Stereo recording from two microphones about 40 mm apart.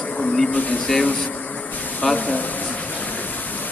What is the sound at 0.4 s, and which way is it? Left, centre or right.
Speech, centre.